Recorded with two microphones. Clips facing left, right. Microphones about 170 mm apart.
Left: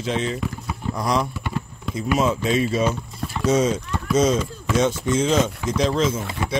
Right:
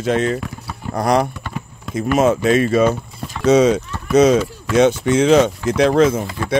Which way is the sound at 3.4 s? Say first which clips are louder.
Right 7 dB; 70° right (ahead or behind).